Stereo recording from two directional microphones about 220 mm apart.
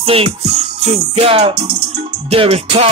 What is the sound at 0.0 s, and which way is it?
Music, 25° right (ahead or behind).